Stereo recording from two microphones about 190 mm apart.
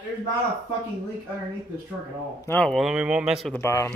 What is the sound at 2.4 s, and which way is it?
Speech, 5° left (ahead or behind).